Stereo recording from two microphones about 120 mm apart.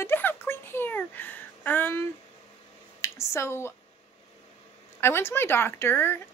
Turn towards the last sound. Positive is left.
turn(degrees=20)  # may be behind; listen again after turning